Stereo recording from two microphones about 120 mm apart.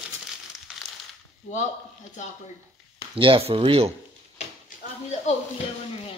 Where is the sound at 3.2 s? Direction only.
50° right (ahead or behind).